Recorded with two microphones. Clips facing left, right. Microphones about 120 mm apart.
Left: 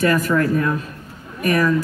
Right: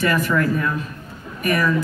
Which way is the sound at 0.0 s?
40° left (ahead or behind).